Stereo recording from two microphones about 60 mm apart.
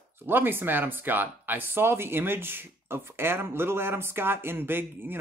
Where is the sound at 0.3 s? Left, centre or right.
Right.